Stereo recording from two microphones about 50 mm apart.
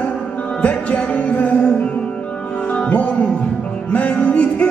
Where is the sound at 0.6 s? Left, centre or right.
Left.